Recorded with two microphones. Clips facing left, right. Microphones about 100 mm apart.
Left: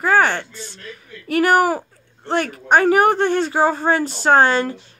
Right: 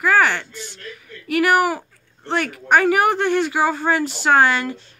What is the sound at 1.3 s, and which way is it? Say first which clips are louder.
Speech: left 2 dB; 35° left (ahead or behind).